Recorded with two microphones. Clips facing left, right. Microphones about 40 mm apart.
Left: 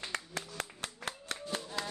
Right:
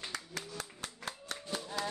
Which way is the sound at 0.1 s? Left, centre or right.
Left.